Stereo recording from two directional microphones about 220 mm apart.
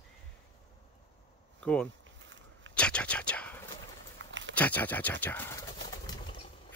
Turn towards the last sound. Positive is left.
turn(degrees=15)  # may be behind; listen again after turning